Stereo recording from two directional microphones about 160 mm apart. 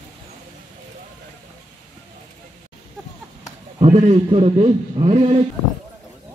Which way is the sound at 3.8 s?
45° right (ahead or behind).